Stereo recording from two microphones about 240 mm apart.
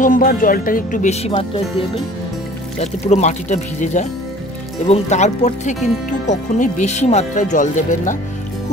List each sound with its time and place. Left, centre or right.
0.0 s speech: left